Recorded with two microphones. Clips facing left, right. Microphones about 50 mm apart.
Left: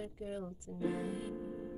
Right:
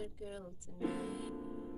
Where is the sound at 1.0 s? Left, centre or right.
Left.